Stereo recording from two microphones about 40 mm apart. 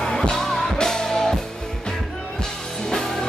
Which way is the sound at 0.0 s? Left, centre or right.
Centre.